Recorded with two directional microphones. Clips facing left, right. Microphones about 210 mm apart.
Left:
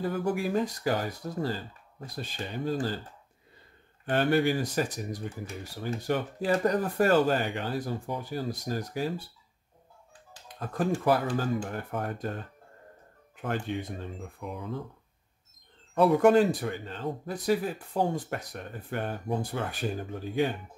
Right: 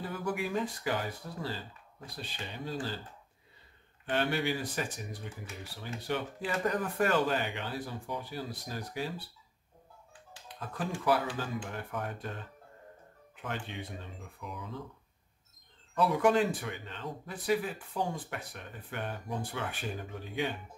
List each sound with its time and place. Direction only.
0.0 s speech: 40° left (ahead or behind)
4.0 s speech: 45° left (ahead or behind)
10.6 s speech: 45° left (ahead or behind)
13.4 s speech: 45° left (ahead or behind)
15.9 s speech: 50° left (ahead or behind)